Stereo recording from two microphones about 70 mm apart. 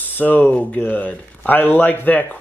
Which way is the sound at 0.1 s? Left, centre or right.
Left.